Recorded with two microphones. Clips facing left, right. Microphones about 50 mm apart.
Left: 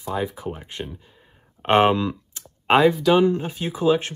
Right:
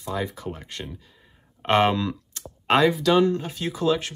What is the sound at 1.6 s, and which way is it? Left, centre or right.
Computer keyboard, left.